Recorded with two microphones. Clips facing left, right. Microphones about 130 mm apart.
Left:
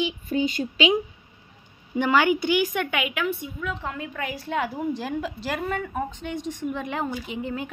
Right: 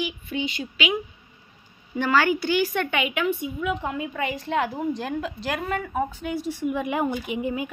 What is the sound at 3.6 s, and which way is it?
A woman's voice, 10° right (ahead or behind).